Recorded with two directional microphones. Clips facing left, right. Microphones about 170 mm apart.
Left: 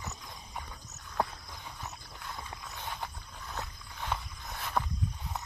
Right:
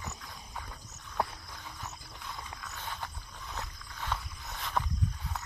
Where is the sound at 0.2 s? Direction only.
15° left (ahead or behind).